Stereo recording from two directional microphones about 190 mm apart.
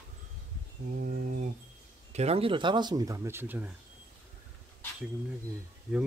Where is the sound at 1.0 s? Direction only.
45° right (ahead or behind).